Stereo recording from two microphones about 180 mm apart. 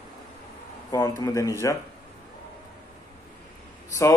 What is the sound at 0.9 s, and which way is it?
Speech, 20° left (ahead or behind).